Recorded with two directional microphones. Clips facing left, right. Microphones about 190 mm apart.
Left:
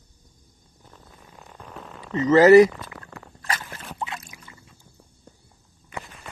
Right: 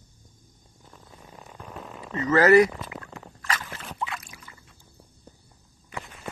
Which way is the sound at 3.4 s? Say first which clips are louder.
Left 1 dB; 30° left (ahead or behind).